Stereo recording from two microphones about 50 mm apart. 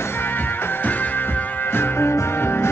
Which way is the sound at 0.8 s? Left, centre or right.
Left.